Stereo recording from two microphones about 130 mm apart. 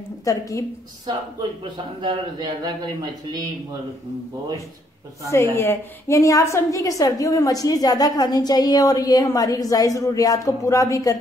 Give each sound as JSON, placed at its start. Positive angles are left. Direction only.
{"t": 0.2, "sound": "a woman's voice", "side_deg": 25}
{"t": 1.6, "sound": "speech", "side_deg": -40}
{"t": 5.3, "sound": "a woman's voice", "side_deg": 20}